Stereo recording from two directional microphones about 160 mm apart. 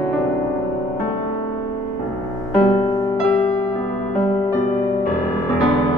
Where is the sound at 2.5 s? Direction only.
30° left (ahead or behind).